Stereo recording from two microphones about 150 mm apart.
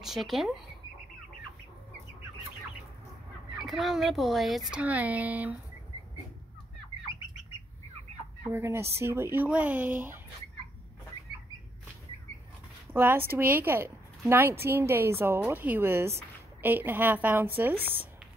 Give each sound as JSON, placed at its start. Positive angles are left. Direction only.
{"t": 0.0, "sound": "speech", "side_deg": 0}
{"t": 3.6, "sound": "speech", "side_deg": 0}
{"t": 8.5, "sound": "speech", "side_deg": -15}
{"t": 12.9, "sound": "speech", "side_deg": -15}